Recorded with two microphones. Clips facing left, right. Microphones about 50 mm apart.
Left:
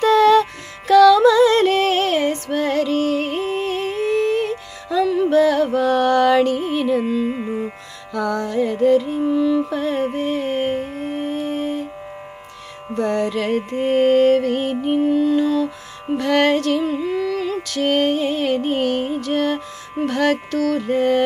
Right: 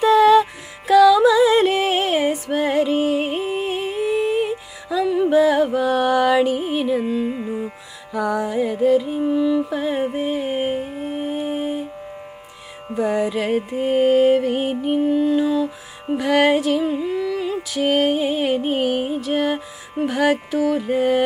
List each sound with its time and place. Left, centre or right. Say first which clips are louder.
0.0 s music: even; centre
7.2 s music: left 1 dB; centre
8.1 s music: even; centre
12.9 s music: even; centre